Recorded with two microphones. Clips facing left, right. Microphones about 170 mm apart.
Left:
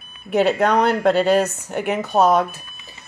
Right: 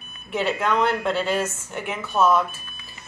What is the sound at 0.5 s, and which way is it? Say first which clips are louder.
Speech: left 5 dB; 40° left (ahead or behind).